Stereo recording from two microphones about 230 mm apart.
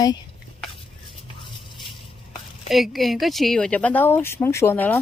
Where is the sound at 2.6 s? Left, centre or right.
Centre.